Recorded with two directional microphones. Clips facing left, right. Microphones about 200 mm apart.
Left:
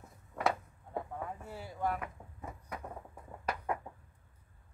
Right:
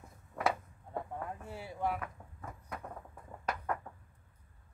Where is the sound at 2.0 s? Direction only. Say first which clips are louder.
Left 1 dB; 10° left (ahead or behind).